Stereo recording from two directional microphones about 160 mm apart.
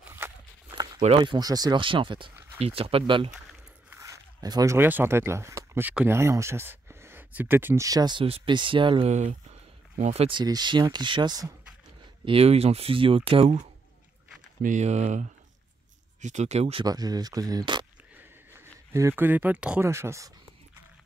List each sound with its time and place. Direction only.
0.0 s a sound: 15° right (ahead or behind)
1.0 s speech: 35° right (ahead or behind)
3.9 s speech: 20° right (ahead or behind)
9.1 s a sound: 50° right (ahead or behind)
10.4 s speech: 25° right (ahead or behind)
12.3 s speech: 40° right (ahead or behind)
14.6 s speech: 50° right (ahead or behind)
16.8 s speech: 25° right (ahead or behind)
18.1 s a sound: 15° right (ahead or behind)
19.9 s speech: 15° right (ahead or behind)